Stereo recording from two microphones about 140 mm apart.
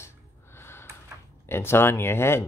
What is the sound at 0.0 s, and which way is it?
Gasp, 15° left (ahead or behind).